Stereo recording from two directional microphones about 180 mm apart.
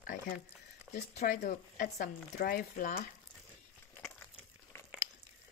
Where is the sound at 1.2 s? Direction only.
45° left (ahead or behind).